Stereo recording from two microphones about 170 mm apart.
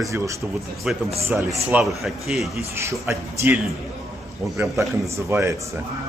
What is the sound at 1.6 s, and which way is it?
Speech, 5° right (ahead or behind).